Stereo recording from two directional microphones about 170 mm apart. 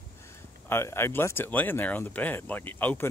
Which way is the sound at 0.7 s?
15° left (ahead or behind).